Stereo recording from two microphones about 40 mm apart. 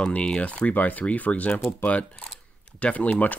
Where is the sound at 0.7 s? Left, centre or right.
Left.